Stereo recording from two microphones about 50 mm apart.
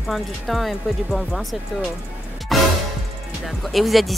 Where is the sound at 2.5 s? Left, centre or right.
Centre.